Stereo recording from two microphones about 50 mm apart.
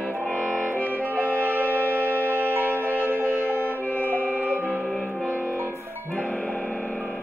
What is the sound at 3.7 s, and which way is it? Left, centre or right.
Music, left.